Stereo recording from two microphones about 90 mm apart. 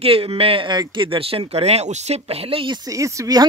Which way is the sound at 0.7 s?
70° right (ahead or behind).